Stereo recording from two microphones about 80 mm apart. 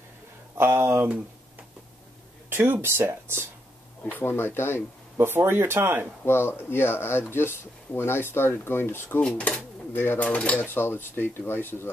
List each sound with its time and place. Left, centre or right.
0.6 s speech: right
1.0 s a sound: centre
2.5 s speech: right
4.1 s speech: left
5.1 s speech: right
6.2 s speech: left
10.2 s speech: centre
10.7 s speech: left